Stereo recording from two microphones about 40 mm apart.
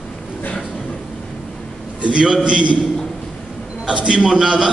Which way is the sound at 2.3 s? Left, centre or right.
Right.